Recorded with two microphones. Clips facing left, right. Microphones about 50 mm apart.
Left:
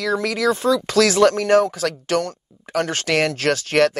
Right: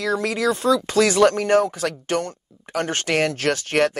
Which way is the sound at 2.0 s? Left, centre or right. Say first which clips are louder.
Left 3 dB; left.